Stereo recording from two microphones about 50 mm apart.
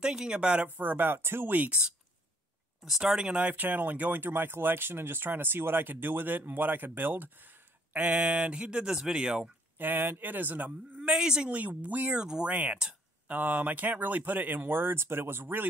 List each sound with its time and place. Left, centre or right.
0.0 s speech: centre
0.7 s speech: right
2.8 s speech: centre
3.2 s speech: right
3.6 s speech: right; by 9.5 s centre
9.8 s speech: right
11.0 s speech: centre
11.4 s speech: right
12.1 s speech: centre
12.4 s speech: right